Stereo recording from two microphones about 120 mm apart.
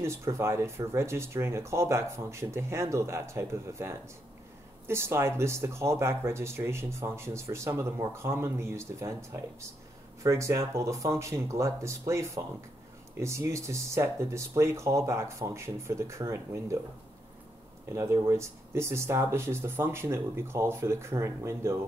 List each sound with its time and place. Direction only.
0.0 s speech: 25° right (ahead or behind)
17.8 s speech: 25° right (ahead or behind)